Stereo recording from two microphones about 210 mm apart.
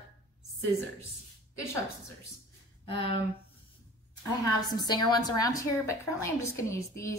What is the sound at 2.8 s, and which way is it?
Speech, 25° left (ahead or behind).